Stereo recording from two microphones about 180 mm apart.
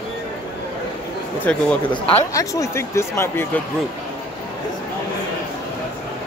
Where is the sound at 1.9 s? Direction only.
30° left (ahead or behind).